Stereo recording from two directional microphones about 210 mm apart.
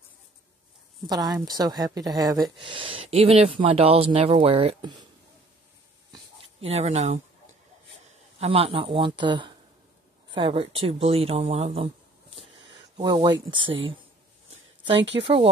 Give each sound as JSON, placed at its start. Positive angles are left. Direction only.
{"t": 1.0, "sound": "a woman's voice", "side_deg": -20}
{"t": 6.1, "sound": "a sound", "side_deg": -30}
{"t": 8.4, "sound": "speech", "side_deg": -30}
{"t": 12.9, "sound": "speech", "side_deg": -20}
{"t": 15.1, "sound": "speech", "side_deg": -25}